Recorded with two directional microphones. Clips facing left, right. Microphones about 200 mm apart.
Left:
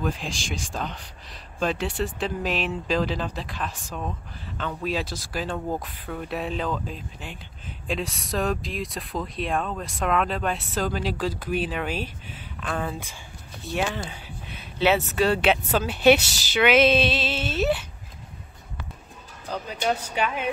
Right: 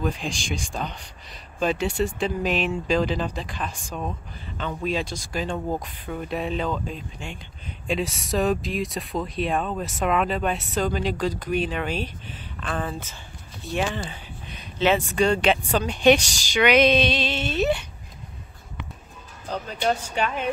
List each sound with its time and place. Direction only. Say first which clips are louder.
0.0 s speech: right 1 dB; centre (ahead or behind)
13.7 s a sound: right 1 dB; 5° left (ahead or behind)
15.1 s speech: right 1 dB; 5° left (ahead or behind)
16.3 s speech: even; 45° right (ahead or behind)
16.5 s speech: right 1 dB; 5° left (ahead or behind)
19.7 s speech: right 1 dB; 10° left (ahead or behind)